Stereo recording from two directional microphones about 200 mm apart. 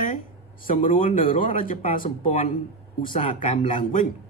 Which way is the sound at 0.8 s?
40° left (ahead or behind).